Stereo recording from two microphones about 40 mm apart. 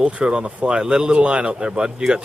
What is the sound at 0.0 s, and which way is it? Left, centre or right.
Speech, right.